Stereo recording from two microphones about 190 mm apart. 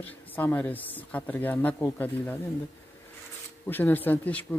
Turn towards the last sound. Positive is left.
turn(degrees=10)  # may be behind; listen again after turning